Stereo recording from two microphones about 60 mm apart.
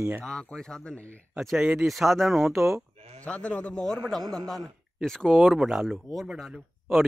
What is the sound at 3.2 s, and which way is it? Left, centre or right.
A man's voice, left.